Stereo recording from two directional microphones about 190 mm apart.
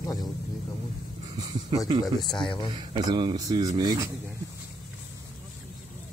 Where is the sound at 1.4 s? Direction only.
20° right (ahead or behind).